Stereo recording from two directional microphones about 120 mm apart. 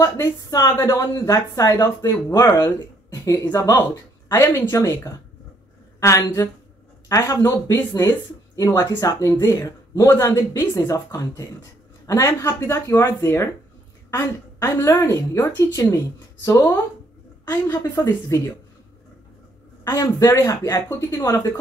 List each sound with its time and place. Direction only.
0.0 s a woman's voice: 30° left (ahead or behind)
19.8 s speech: 25° left (ahead or behind)